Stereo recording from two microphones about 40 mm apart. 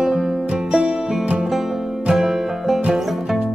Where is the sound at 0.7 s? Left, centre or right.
Right.